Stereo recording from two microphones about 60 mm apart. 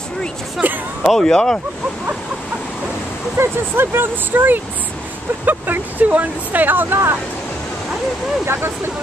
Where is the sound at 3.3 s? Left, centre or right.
Right.